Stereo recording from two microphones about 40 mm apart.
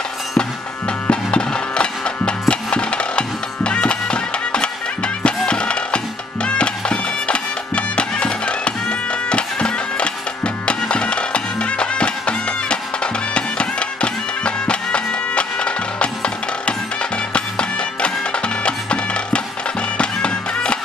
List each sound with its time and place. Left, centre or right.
1.1 s music: left
17.3 s music: left